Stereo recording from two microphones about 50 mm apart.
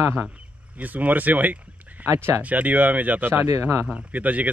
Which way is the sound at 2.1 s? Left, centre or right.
Right.